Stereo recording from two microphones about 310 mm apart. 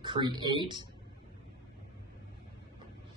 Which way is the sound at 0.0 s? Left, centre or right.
Centre.